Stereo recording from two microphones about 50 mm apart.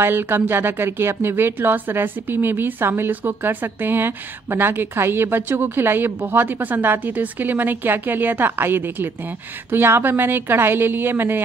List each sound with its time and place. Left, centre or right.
0.0 s speech: right